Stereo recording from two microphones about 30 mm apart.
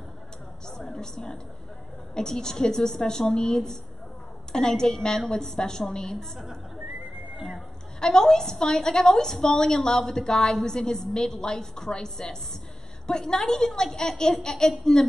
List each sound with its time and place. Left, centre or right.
0.7 s a woman's voice: centre
8.0 s a woman's voice: centre